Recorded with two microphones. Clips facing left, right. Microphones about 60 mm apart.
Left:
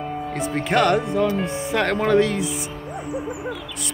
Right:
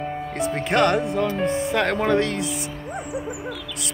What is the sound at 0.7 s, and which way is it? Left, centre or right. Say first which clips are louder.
Speech: left 1 dB; centre.